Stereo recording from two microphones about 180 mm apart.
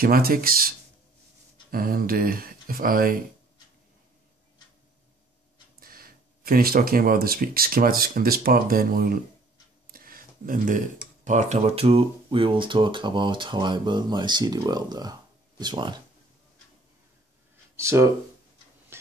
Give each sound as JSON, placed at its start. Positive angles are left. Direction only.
{"t": 0.0, "sound": "speech", "side_deg": -55}
{"t": 5.8, "sound": "speech", "side_deg": -55}
{"t": 9.8, "sound": "a sound", "side_deg": -55}
{"t": 11.2, "sound": "speech", "side_deg": -40}
{"t": 17.7, "sound": "speech", "side_deg": -15}